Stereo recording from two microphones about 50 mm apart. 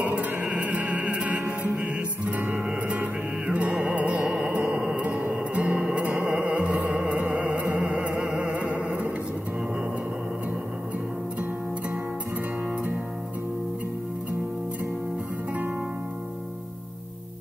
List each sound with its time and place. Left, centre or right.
0.0 s music: right
4.7 s a sound: right
5.3 s music: right
8.5 s music: right